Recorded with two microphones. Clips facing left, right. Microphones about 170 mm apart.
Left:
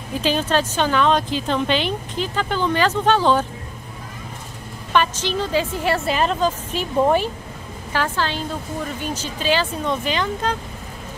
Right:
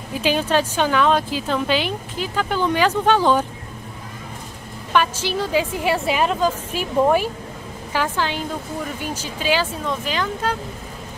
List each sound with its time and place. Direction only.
0.2 s speech: 10° right (ahead or behind)
4.9 s speech: 10° right (ahead or behind)